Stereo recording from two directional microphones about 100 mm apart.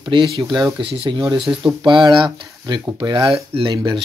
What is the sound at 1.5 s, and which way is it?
Speech, 30° right (ahead or behind).